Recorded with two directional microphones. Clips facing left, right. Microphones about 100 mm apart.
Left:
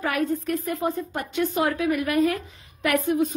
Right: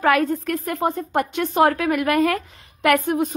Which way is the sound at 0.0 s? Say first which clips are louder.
Right 6 dB; 80° right.